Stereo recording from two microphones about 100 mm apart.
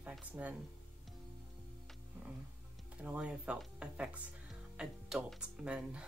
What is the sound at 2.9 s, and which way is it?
Speech, 10° right (ahead or behind).